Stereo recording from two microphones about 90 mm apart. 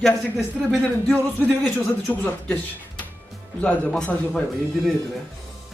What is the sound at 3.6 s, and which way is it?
Speech, 15° left (ahead or behind).